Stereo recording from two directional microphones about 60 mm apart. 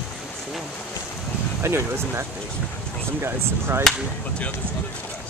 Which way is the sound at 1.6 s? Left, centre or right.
Right.